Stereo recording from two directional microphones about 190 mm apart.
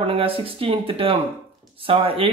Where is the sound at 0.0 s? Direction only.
30° right (ahead or behind).